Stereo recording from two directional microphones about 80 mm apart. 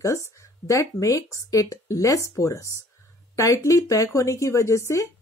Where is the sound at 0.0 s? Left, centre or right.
Left.